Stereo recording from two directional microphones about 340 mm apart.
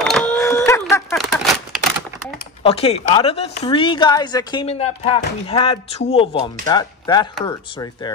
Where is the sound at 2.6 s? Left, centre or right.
Centre.